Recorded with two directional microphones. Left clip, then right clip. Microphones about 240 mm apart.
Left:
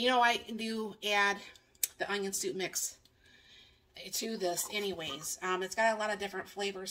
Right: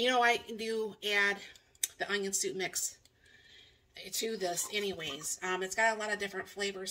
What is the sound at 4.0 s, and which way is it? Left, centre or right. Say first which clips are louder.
Speech: right 1 dB; left.